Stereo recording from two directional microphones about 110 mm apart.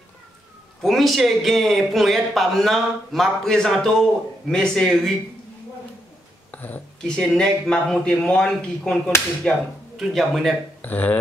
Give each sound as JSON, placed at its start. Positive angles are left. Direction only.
{"t": 0.8, "sound": "a man's voice", "side_deg": 0}
{"t": 6.5, "sound": "a man's voice", "side_deg": 15}
{"t": 10.8, "sound": "speech", "side_deg": 15}